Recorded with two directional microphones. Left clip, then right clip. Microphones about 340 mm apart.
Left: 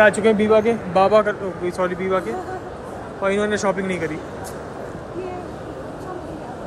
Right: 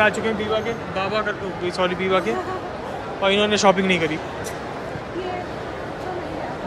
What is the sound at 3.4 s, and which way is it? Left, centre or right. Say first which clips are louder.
Speech: right 4 dB; centre.